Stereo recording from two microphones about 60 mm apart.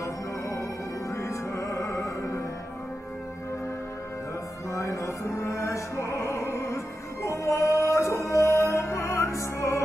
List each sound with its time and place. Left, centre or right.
0.0 s music: left
4.6 s music: left